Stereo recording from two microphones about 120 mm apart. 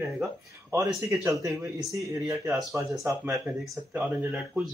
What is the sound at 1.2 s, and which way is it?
Speech, 25° right (ahead or behind).